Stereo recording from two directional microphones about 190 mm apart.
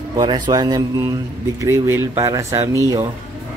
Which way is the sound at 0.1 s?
20° right (ahead or behind).